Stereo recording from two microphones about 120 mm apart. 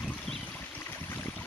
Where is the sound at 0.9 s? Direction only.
15° left (ahead or behind).